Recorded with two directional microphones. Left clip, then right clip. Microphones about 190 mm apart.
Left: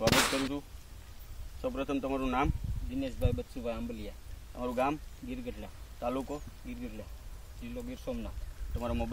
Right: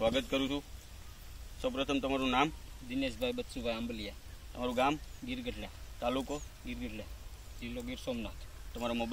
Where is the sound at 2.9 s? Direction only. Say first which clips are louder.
Right 1 dB; 10° left (ahead or behind).